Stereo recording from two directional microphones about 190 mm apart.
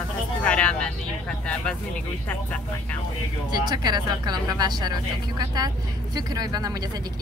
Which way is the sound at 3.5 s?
20° right (ahead or behind).